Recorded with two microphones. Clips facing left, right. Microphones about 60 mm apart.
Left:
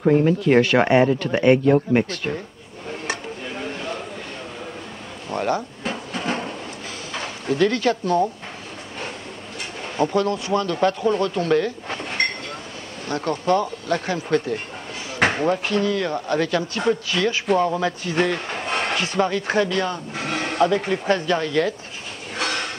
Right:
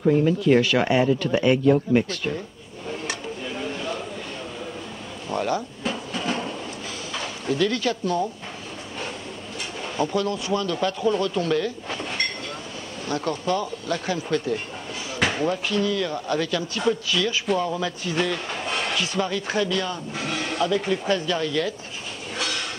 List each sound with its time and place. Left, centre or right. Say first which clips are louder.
0.0 s speech: left 2 dB; left
2.9 s dishes: left 2 dB; left
5.3 s drawer open or close: left 2 dB; left
7.1 s speech: left 2 dB; left
9.6 s speech: left 3 dB; left
22.3 s a sound: left 4 dB; left